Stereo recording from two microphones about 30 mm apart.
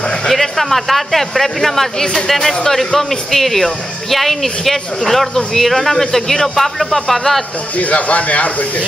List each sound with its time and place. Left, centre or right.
0.3 s a man's voice: centre
7.7 s speech: left